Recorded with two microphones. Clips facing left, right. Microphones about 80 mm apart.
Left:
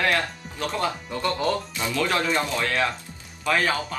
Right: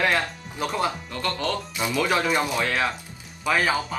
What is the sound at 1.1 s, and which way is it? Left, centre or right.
Speech, centre.